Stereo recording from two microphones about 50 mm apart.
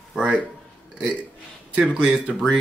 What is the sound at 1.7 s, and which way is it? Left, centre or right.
Speech, centre.